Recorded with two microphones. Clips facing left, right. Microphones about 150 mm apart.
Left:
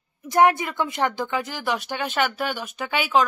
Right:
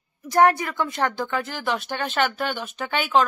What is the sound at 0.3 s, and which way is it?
A woman's voice, 20° left (ahead or behind).